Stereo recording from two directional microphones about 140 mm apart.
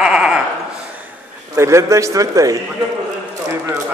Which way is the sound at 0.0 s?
5° right (ahead or behind).